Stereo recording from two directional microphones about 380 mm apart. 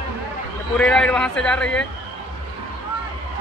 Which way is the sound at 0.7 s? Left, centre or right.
Centre.